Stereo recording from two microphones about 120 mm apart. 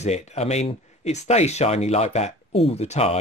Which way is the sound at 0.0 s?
65° left (ahead or behind).